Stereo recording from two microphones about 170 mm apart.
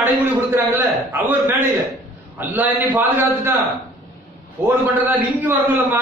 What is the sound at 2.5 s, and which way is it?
A man's voice, 10° right (ahead or behind).